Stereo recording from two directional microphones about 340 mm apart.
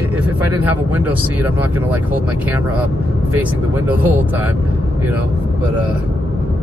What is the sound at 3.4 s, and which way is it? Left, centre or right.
Speech, centre.